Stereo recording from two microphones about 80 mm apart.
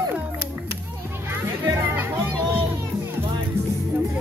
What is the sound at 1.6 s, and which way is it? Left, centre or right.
Music, right.